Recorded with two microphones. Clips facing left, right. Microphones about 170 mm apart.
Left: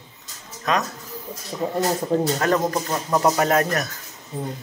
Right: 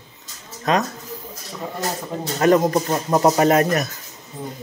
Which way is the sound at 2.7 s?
25° right (ahead or behind).